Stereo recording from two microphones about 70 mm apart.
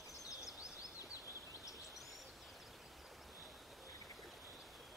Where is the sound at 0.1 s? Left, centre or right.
Centre.